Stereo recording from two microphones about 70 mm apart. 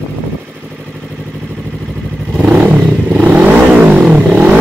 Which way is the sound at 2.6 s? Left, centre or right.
Right.